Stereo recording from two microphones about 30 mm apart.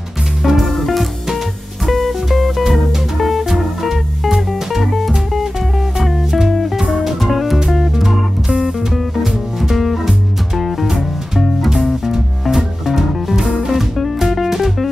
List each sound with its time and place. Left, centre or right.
0.4 s music: centre
0.7 s music: centre
8.5 s music: right
8.7 s music: centre